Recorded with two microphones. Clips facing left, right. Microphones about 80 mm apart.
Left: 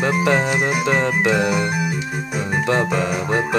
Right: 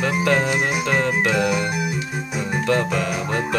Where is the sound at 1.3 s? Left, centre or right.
Centre.